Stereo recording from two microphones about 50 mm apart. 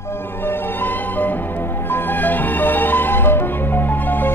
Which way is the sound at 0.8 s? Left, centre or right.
Left.